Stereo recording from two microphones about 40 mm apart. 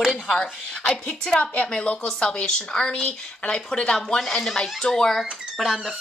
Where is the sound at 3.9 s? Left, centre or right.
Centre.